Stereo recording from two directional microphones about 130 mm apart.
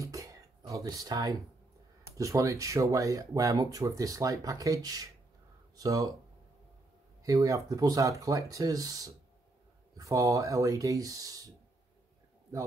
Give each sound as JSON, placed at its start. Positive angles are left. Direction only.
{"t": 0.0, "sound": "a sound", "side_deg": -25}
{"t": 2.1, "sound": "speech", "side_deg": -25}
{"t": 7.2, "sound": "speech", "side_deg": -25}